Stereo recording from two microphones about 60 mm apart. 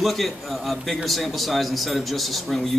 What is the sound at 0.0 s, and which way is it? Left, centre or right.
A man's voice, centre.